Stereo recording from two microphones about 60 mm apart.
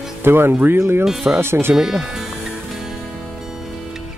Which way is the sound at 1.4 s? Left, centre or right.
Right.